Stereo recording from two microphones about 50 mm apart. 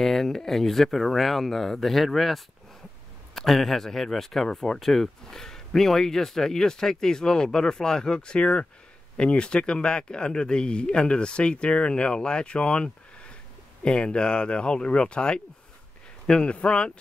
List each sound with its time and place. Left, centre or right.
0.0 s speech: centre